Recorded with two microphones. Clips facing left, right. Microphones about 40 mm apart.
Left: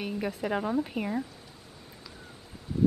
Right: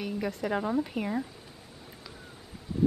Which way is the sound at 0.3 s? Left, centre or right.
Centre.